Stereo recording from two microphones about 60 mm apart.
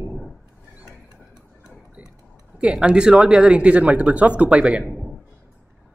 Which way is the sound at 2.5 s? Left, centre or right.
Centre.